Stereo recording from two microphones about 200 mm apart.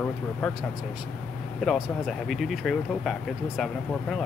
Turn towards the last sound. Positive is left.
turn(degrees=0)  # may be behind; listen again after turning